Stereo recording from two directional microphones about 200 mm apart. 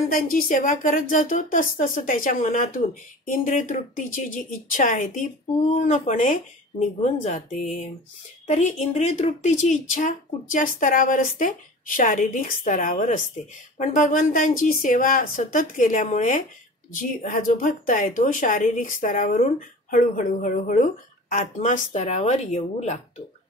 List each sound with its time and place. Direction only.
0.1 s speech: 45° left (ahead or behind)